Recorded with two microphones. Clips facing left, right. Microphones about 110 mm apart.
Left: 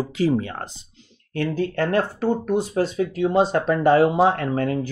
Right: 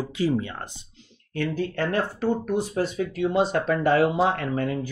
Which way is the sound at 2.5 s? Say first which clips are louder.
Left 3 dB; 25° left (ahead or behind).